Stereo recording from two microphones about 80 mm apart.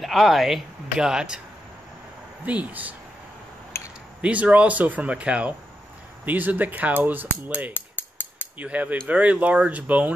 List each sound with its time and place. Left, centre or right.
0.0 s speech: centre
2.4 s speech: centre
4.2 s speech: centre